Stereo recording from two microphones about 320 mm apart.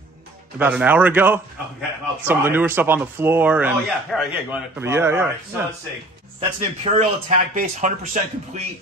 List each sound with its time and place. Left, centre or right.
0.6 s a man's voice: centre
6.8 s speech: right